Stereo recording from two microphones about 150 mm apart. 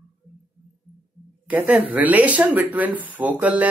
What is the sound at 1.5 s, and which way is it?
Speech, 10° right (ahead or behind).